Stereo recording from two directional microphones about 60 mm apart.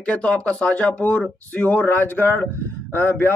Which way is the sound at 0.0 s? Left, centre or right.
Centre.